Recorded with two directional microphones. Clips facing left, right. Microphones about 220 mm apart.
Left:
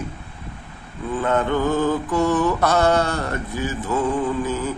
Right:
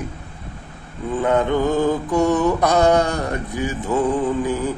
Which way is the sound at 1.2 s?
15° right (ahead or behind).